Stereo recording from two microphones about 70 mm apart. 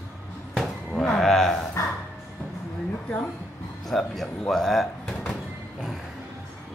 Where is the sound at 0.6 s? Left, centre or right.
Centre.